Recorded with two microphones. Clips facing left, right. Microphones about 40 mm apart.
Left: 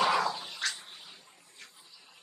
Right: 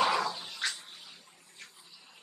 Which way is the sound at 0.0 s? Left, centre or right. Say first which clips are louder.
Left 1 dB; centre.